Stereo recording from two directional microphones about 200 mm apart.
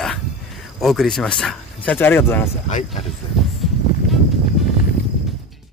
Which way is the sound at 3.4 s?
Centre (ahead or behind).